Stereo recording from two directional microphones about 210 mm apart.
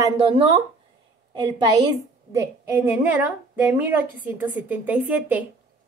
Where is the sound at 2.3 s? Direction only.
10° right (ahead or behind).